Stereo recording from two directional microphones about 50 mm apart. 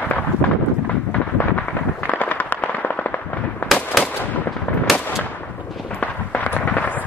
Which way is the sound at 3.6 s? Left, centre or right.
Centre.